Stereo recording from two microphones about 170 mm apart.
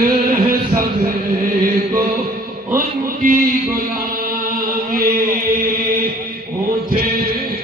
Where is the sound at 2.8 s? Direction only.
55° right (ahead or behind).